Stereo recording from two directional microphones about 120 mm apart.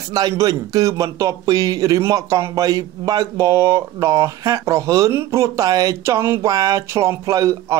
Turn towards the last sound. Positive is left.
turn(degrees=-30)  # may be behind; listen again after turning